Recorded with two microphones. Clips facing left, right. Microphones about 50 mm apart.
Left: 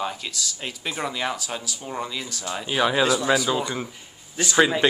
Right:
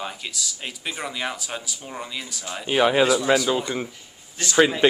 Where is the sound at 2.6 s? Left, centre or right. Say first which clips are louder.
Right 3 dB; right.